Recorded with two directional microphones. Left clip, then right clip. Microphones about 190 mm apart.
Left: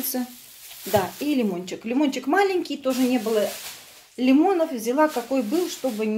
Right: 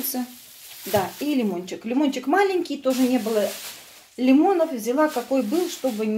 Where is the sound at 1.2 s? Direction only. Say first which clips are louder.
Even; 10° left (ahead or behind).